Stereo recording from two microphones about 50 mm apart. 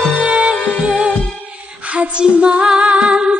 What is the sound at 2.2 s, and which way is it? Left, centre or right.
Music, right.